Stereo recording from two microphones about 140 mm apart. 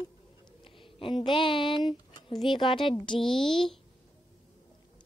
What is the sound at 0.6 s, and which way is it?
A woman's voice, 40° left (ahead or behind).